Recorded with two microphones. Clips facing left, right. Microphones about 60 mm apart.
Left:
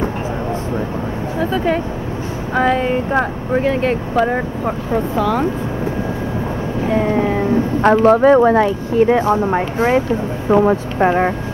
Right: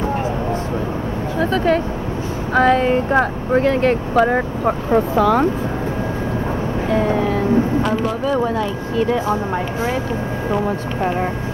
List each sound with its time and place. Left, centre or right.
1.4 s speech: centre
4.2 s speech: centre
6.9 s vehicle: centre
7.8 s speech: left